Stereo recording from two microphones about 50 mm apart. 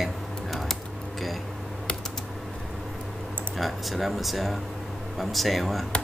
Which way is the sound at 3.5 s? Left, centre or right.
Centre.